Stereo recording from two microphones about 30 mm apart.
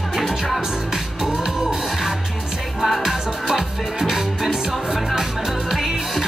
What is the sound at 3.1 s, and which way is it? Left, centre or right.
Music, centre.